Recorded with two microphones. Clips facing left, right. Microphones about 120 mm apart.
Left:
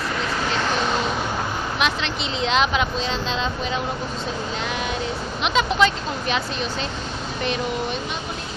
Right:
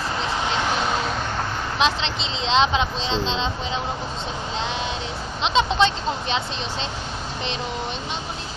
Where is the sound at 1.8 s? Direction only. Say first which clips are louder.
Right 3 dB; 25° right (ahead or behind).